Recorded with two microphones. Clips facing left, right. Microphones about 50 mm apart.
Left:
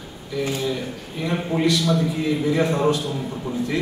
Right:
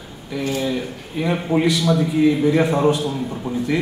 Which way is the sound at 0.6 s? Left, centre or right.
Centre.